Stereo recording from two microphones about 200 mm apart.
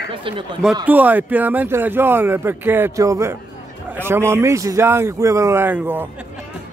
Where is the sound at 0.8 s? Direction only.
10° right (ahead or behind).